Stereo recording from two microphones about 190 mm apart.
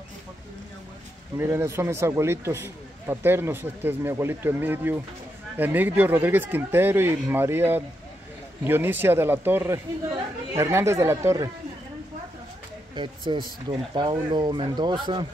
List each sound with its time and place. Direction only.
1.4 s speech: 15° right (ahead or behind)
12.9 s speech: 25° right (ahead or behind)